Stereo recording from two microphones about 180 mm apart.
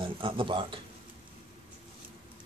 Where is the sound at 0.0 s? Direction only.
30° right (ahead or behind).